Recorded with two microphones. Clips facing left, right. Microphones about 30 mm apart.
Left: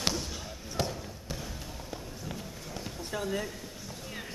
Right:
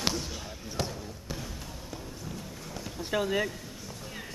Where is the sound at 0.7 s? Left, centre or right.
Centre.